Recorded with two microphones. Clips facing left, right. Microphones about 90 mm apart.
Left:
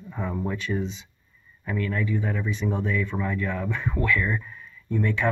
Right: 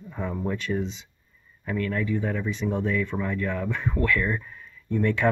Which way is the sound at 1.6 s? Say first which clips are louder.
Right 1 dB; 15° left (ahead or behind).